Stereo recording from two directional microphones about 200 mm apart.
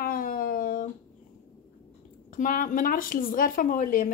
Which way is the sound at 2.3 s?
45° left (ahead or behind).